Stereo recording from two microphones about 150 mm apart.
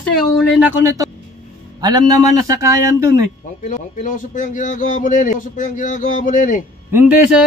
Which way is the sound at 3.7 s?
60° left (ahead or behind).